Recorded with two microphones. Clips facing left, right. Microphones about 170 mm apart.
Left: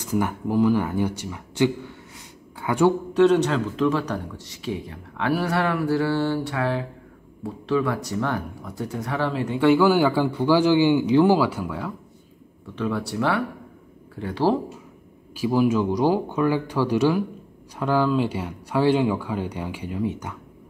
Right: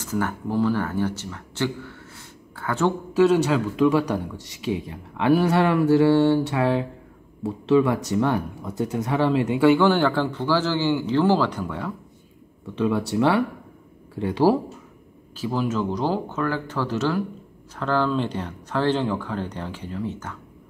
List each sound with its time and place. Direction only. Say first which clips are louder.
0.0 s speech: left 2 dB; 15° left (ahead or behind)
3.1 s a man's voice: even; 5° right (ahead or behind)
9.6 s speech: left 1 dB; centre (ahead or behind)
12.7 s a man's voice: right 4 dB; 20° right (ahead or behind)
15.3 s speech: left 5 dB; 10° left (ahead or behind)